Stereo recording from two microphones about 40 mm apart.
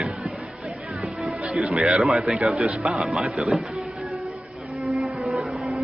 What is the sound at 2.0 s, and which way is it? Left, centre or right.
Speech, centre.